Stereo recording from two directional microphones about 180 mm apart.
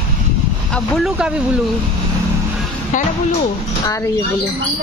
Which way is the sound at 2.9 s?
45° left (ahead or behind).